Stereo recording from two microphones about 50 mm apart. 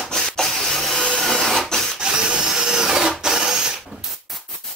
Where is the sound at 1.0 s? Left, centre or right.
Centre.